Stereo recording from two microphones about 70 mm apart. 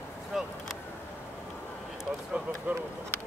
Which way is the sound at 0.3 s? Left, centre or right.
Centre.